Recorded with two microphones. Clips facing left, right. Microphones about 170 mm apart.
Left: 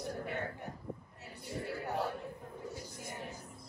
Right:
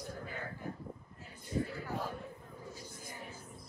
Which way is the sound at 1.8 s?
70° left (ahead or behind).